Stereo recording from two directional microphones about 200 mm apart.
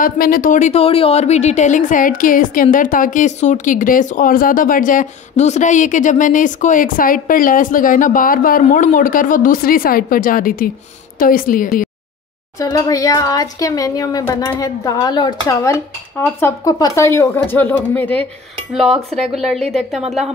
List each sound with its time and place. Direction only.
0.0 s a woman's voice: 45° left (ahead or behind)
12.5 s a woman's voice: 15° left (ahead or behind); by 20.2 s centre (ahead or behind)